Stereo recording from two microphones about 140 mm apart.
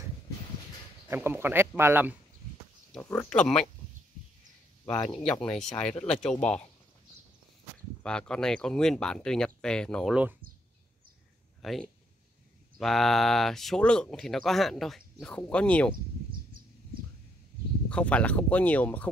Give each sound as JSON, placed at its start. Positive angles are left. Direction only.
{"t": 1.0, "sound": "speech", "side_deg": -15}
{"t": 2.9, "sound": "speech", "side_deg": 10}
{"t": 5.1, "sound": "speech", "side_deg": 5}
{"t": 8.0, "sound": "speech", "side_deg": 5}
{"t": 11.6, "sound": "speech", "side_deg": 0}
{"t": 17.8, "sound": "speech", "side_deg": 10}